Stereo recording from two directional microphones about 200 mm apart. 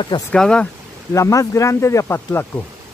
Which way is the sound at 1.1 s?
15° left (ahead or behind).